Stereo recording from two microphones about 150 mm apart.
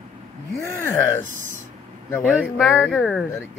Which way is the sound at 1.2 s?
55° right (ahead or behind).